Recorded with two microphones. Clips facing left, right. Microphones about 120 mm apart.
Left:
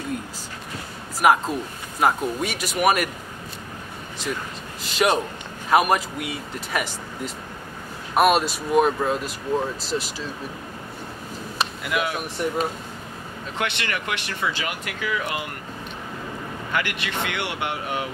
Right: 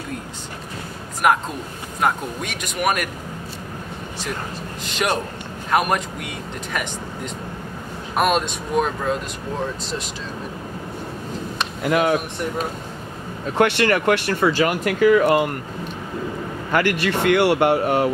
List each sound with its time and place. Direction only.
1.2 s a man's voice: 5° left (ahead or behind)
4.8 s a man's voice: centre (ahead or behind)
8.1 s a man's voice: 5° left (ahead or behind)
11.8 s speech: 40° right (ahead or behind)
13.6 s speech: 45° right (ahead or behind)
16.7 s speech: 40° right (ahead or behind)